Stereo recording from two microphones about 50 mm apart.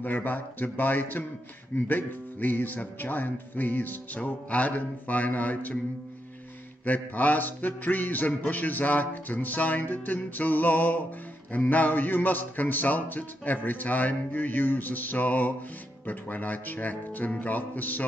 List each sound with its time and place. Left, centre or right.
0.0 s music: left
6.8 s music: left